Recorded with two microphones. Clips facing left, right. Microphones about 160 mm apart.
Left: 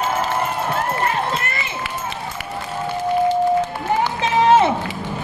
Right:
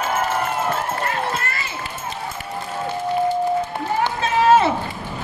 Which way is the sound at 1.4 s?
20° left (ahead or behind).